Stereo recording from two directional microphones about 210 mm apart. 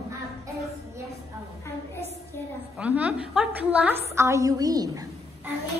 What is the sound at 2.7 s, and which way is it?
A woman's voice, 5° right (ahead or behind).